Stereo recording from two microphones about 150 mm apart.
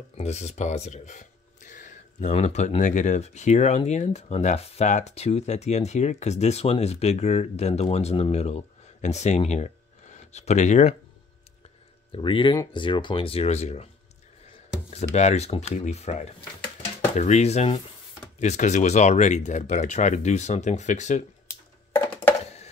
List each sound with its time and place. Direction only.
0.2 s speech: 50° left (ahead or behind)
12.1 s speech: 35° left (ahead or behind)
15.1 s speech: 45° left (ahead or behind)
21.5 s a sound: 15° left (ahead or behind)